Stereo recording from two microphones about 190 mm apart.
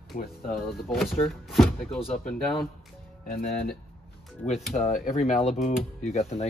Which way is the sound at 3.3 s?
50° left (ahead or behind).